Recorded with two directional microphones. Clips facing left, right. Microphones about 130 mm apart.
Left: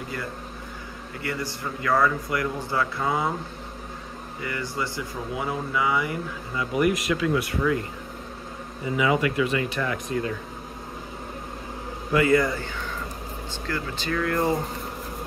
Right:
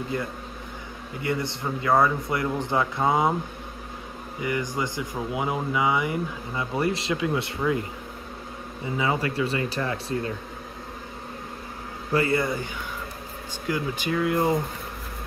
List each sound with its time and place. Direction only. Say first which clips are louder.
1.2 s speech: right 3 dB; 20° right (ahead or behind)
4.4 s speech: right 3 dB; 20° right (ahead or behind)
8.9 s speech: left 3 dB; 30° right (ahead or behind)
12.1 s speech: left 3 dB; 30° right (ahead or behind)
13.7 s speech: right 3 dB; 15° right (ahead or behind)